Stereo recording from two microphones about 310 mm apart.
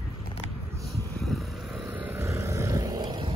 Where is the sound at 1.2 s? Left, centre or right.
Centre.